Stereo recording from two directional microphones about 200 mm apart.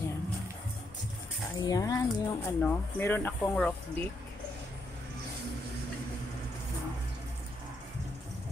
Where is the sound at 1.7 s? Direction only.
20° left (ahead or behind).